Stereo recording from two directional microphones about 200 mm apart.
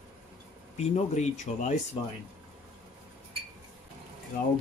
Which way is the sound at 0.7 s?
35° left (ahead or behind).